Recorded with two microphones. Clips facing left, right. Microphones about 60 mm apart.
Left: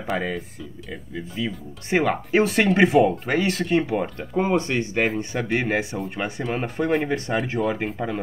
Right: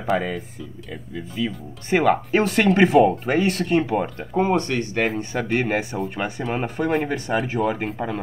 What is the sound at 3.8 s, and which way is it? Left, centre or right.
Speech, right.